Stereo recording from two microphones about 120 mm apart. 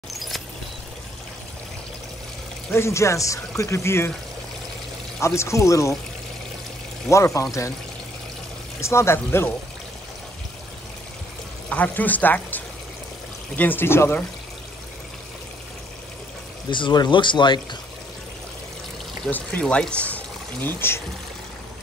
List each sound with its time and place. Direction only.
2.7 s speech: 25° left (ahead or behind)
5.2 s speech: 25° left (ahead or behind)
7.1 s speech: 25° left (ahead or behind)
8.8 s speech: 20° left (ahead or behind)
11.7 s speech: 15° left (ahead or behind)
16.7 s speech: 40° left (ahead or behind)
19.2 s speech: 10° left (ahead or behind)